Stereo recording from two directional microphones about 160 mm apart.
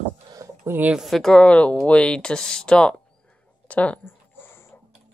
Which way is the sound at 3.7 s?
10° left (ahead or behind).